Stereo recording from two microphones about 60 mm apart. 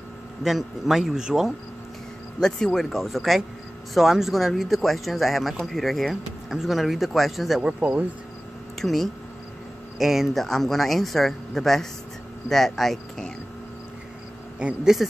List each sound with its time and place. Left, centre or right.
0.4 s speech: centre
2.4 s speech: centre
7.6 s speech: right
8.8 s speech: centre
14.9 s speech: centre